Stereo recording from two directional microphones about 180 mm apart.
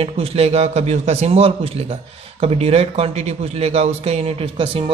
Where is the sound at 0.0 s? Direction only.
35° right (ahead or behind).